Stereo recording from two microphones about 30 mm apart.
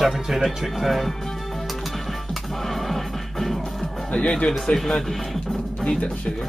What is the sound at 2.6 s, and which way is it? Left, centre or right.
Music, centre.